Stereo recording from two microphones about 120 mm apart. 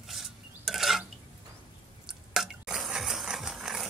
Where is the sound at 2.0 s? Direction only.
5° right (ahead or behind).